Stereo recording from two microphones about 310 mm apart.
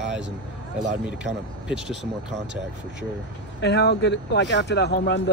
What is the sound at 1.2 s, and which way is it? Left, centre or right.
Speech, centre.